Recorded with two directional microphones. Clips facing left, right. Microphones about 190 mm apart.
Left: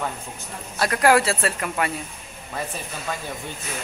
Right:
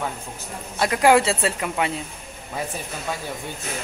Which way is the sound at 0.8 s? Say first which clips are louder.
Right 2 dB; 20° right (ahead or behind).